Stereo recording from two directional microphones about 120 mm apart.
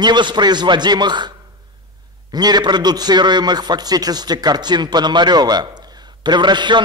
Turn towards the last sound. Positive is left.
turn(degrees=-40)  # may be behind; listen again after turning